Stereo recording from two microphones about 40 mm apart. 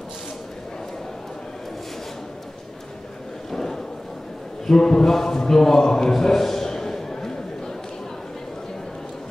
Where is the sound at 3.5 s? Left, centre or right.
Centre.